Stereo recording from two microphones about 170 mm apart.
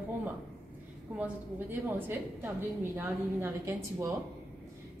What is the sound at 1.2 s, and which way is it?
A woman's voice, 10° right (ahead or behind).